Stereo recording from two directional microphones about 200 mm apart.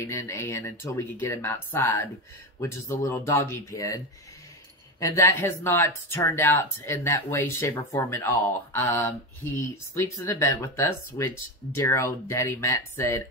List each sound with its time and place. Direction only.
0.0 s speech: 15° left (ahead or behind)
5.0 s speech: 15° left (ahead or behind)